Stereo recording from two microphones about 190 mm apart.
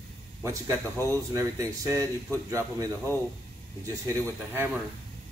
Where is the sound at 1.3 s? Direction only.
15° right (ahead or behind).